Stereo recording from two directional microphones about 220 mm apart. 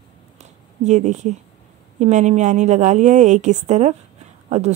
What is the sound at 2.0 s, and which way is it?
A woman's voice, 30° right (ahead or behind).